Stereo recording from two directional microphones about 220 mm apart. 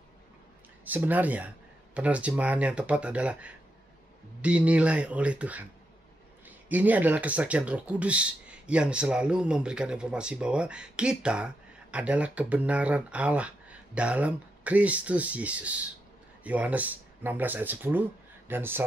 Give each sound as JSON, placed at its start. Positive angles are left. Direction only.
{"t": 0.8, "sound": "speech", "side_deg": -10}